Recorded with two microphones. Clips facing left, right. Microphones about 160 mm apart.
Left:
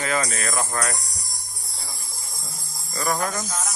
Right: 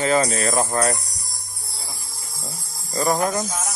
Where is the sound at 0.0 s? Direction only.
30° right (ahead or behind).